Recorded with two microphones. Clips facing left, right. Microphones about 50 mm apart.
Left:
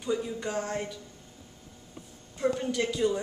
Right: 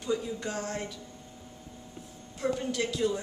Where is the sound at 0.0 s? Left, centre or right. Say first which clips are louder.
Left 1 dB; centre.